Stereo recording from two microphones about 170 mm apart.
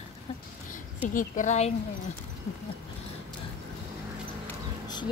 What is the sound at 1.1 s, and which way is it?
Speech, 45° left (ahead or behind).